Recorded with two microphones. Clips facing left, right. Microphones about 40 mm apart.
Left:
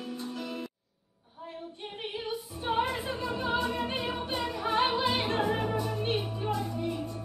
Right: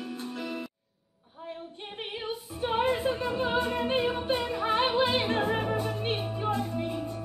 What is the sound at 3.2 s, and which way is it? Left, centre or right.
Music, right.